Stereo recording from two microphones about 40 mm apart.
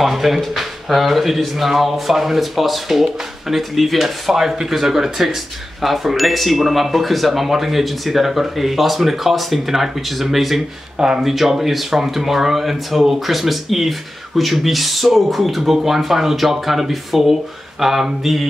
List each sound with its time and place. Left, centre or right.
0.0 s speech: centre